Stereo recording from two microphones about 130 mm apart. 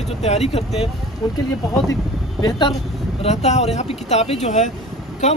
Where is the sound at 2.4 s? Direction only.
30° left (ahead or behind).